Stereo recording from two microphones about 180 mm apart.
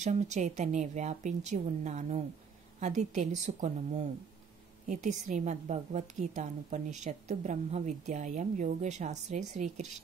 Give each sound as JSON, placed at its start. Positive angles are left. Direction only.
{"t": 0.0, "sound": "a woman's voice", "side_deg": -40}